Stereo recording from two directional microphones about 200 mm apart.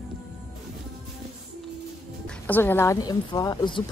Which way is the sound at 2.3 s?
10° left (ahead or behind).